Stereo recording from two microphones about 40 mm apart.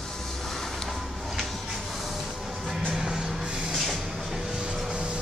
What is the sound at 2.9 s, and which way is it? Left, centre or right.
Music, centre.